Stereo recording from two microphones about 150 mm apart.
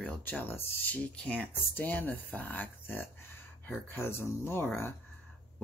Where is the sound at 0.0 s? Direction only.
10° left (ahead or behind).